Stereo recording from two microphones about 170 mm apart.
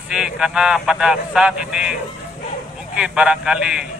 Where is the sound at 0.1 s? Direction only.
5° right (ahead or behind).